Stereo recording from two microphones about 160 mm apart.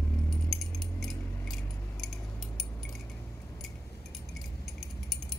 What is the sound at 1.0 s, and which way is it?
Keys jangling, centre (ahead or behind).